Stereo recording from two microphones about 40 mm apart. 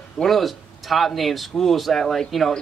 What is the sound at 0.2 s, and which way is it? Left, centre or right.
Speech, centre.